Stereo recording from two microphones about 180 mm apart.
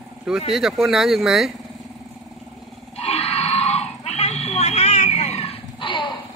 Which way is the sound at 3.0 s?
35° left (ahead or behind).